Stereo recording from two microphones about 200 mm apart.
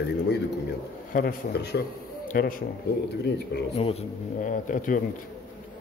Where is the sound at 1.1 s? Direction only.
55° left (ahead or behind).